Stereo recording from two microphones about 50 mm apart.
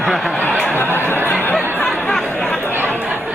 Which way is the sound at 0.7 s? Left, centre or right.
Left.